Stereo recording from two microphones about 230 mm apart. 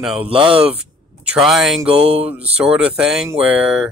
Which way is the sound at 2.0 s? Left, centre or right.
Right.